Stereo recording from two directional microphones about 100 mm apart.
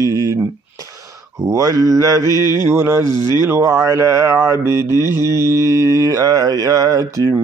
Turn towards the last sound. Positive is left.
turn(degrees=-35)  # may be behind; listen again after turning